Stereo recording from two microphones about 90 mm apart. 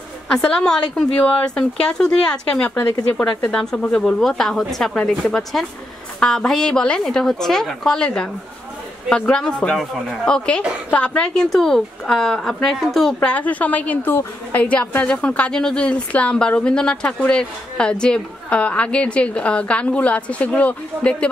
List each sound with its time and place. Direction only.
0.3 s a woman's voice: 10° left (ahead or behind)
9.3 s a woman's voice: 10° left (ahead or behind)
13.3 s a woman's voice: 15° left (ahead or behind)